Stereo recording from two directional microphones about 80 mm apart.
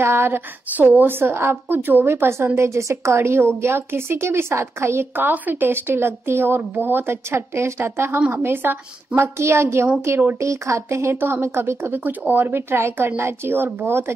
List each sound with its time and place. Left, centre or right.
0.0 s a woman's voice: right